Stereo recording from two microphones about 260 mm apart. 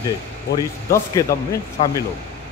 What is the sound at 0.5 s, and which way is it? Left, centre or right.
Speech, centre.